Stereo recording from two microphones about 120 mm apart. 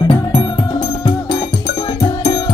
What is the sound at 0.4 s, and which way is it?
Music, 35° left (ahead or behind).